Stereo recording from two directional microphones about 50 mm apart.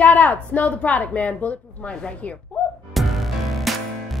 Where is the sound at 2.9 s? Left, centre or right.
Centre.